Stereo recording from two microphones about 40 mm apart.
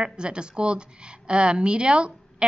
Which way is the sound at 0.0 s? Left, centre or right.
Right.